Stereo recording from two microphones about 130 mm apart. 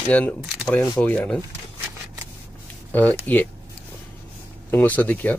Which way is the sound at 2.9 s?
10° left (ahead or behind).